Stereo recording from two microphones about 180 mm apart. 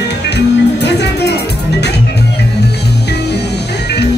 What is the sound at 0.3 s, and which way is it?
Music, 70° left (ahead or behind).